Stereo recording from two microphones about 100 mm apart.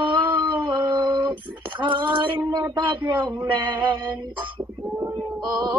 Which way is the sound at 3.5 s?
55° right (ahead or behind).